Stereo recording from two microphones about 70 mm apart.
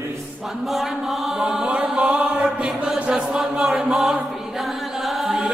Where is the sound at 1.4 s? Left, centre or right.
Centre.